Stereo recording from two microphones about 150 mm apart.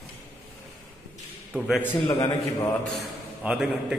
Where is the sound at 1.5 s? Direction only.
10° right (ahead or behind).